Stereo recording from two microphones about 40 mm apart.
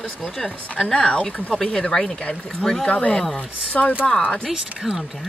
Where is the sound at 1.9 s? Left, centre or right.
Centre.